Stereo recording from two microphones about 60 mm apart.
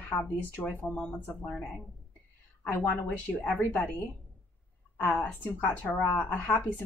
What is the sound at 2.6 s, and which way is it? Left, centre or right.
Speech, left.